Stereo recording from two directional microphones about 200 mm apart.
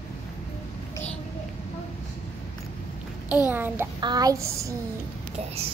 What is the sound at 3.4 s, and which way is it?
A child's voice, 10° right (ahead or behind).